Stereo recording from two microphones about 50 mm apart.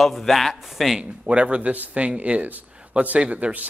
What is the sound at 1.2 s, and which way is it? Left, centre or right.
Speech, right.